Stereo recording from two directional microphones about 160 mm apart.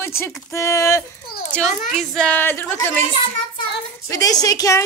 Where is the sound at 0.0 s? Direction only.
15° left (ahead or behind).